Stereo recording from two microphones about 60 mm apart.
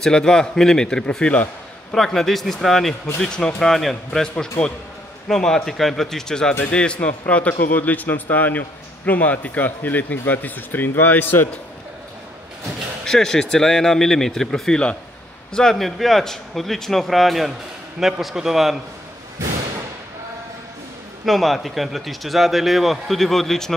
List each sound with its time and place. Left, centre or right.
0.0 s a man's voice: centre; by 11.4 s left
13.0 s a man's voice: centre
21.3 s a man's voice: centre